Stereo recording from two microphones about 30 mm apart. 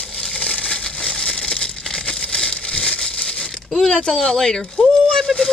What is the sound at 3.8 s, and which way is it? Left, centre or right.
Speech, left.